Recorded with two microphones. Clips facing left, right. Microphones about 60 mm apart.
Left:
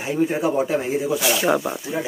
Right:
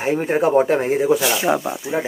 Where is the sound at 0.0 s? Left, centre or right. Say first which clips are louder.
Right 3 dB; right.